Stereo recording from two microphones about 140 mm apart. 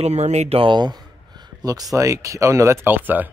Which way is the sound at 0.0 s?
55° right (ahead or behind).